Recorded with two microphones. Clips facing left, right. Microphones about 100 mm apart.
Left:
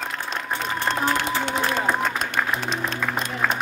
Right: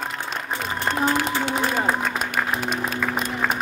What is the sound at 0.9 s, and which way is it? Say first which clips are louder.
Music: right 2 dB; 5° right (ahead or behind).